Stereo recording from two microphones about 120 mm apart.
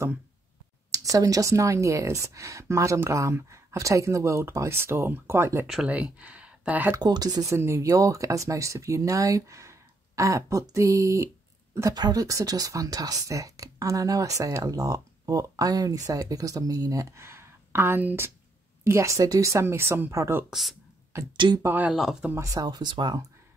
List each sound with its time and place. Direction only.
0.9 s a woman's voice: 30° right (ahead or behind)
5.7 s speech: 5° right (ahead or behind)
7.0 s a woman's voice: 35° right (ahead or behind)
20.4 s speech: centre (ahead or behind)
21.1 s a woman's voice: 25° right (ahead or behind)
21.6 s speech: 15° right (ahead or behind)
21.9 s speech: 5° right (ahead or behind)
22.3 s speech: 25° right (ahead or behind)